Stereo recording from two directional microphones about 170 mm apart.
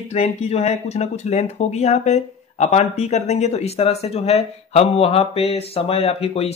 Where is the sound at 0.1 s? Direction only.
40° left (ahead or behind).